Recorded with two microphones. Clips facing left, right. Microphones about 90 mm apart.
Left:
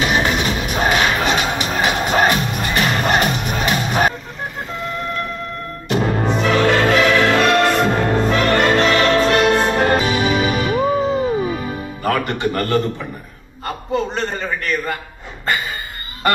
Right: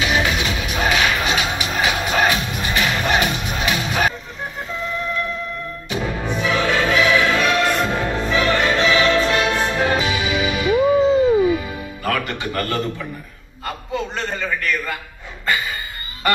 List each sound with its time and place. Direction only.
0.0 s music: 40° left (ahead or behind)
5.9 s music: 50° left (ahead or behind)
13.7 s a man's voice: 35° left (ahead or behind)